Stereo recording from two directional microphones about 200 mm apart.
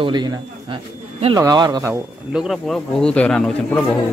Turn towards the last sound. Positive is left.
turn(degrees=5)  # may be behind; listen again after turning